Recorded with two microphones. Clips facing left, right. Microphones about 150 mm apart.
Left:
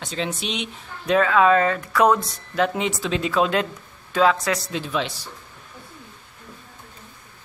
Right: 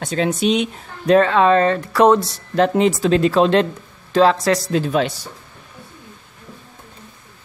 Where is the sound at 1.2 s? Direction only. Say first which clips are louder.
Right 2 dB; 30° right (ahead or behind).